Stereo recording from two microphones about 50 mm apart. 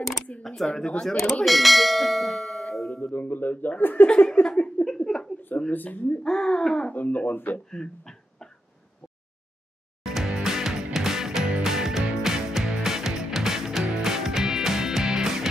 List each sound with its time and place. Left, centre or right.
0.6 s speech: centre
1.0 s speech: centre
1.4 s bell: centre
3.0 s speech: left
4.4 s a sound: left
4.9 s a sound: centre
5.7 s speech: left
6.2 s speech: centre
6.9 s speech: left
7.7 s a sound: centre
10.0 s music: centre